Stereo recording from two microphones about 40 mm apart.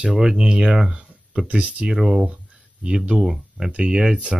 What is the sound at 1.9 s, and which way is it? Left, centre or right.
Speech, centre.